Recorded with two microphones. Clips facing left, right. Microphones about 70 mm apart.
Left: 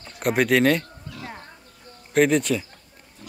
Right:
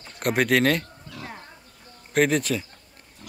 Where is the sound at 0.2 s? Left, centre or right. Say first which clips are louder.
Left 2 dB; centre.